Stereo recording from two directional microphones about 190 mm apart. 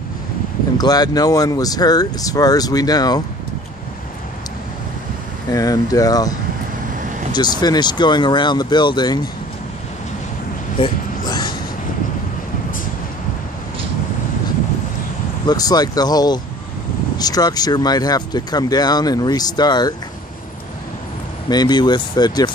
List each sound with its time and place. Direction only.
0.7 s speech: 20° left (ahead or behind)
5.5 s speech: 20° left (ahead or behind)
7.3 s speech: 20° left (ahead or behind)
10.8 s a sound: 20° left (ahead or behind)
15.4 s speech: 20° left (ahead or behind)
21.5 s speech: 20° left (ahead or behind)